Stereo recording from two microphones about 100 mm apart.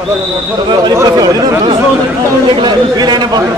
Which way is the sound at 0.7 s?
45° right (ahead or behind).